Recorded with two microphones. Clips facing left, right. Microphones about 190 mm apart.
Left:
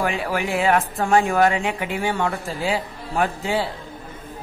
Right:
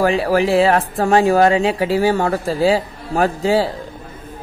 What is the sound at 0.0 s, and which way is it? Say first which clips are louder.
Speech: right 8 dB; 35° right (ahead or behind).